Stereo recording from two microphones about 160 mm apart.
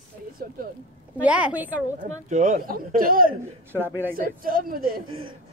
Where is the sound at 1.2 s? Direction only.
10° right (ahead or behind).